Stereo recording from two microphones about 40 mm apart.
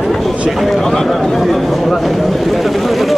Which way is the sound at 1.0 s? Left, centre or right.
Centre.